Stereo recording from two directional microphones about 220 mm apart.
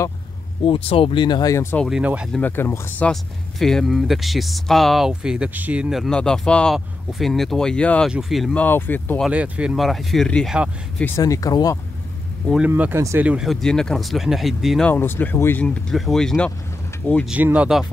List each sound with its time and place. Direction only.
0.7 s speech: 25° left (ahead or behind)
1.9 s speech: 5° right (ahead or behind)
2.4 s speech: 10° left (ahead or behind)
9.3 s speech: 5° right (ahead or behind)
11.1 s speech: 15° left (ahead or behind)
12.4 s speech: 5° right (ahead or behind)